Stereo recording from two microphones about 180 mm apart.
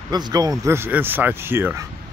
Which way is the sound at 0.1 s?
20° right (ahead or behind).